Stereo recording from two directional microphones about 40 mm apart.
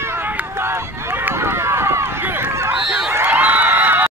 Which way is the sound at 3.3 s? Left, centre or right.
Right.